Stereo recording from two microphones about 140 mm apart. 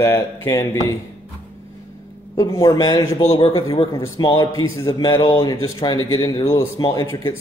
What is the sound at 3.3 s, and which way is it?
Speech, 45° left (ahead or behind).